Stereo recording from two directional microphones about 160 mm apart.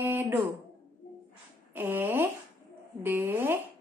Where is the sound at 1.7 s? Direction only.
10° right (ahead or behind).